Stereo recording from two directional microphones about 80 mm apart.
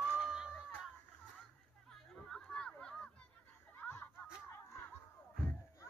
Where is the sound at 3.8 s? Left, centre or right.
Left.